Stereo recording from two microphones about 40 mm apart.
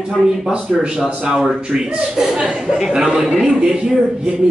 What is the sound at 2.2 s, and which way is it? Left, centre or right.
A man's voice, centre.